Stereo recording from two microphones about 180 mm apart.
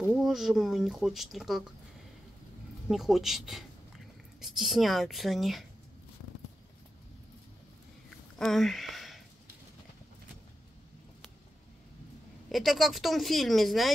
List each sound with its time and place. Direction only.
0.0 s speech: centre (ahead or behind)
2.9 s speech: centre (ahead or behind)
8.4 s speech: centre (ahead or behind)
12.4 s speech: centre (ahead or behind)